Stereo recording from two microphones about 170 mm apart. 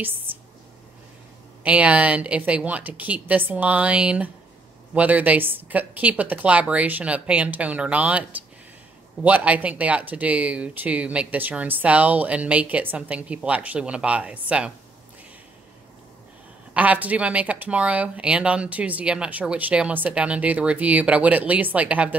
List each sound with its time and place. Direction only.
1.6 s speech: 10° right (ahead or behind)
16.7 s speech: 10° right (ahead or behind)